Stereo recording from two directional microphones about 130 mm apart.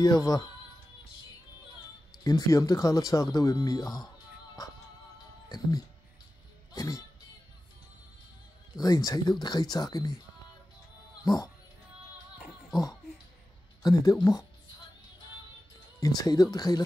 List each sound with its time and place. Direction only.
0.0 s speech: 30° left (ahead or behind)
2.2 s speech: 30° left (ahead or behind)
5.5 s speech: 30° left (ahead or behind)
6.7 s music: 25° left (ahead or behind)
8.7 s speech: 30° left (ahead or behind)
11.2 s speech: 30° left (ahead or behind)
13.8 s speech: 30° left (ahead or behind)
16.0 s speech: 30° left (ahead or behind)